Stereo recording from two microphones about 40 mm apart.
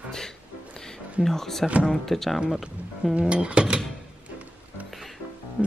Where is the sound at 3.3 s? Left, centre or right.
Right.